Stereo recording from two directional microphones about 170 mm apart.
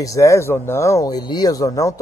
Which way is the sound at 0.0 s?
20° left (ahead or behind).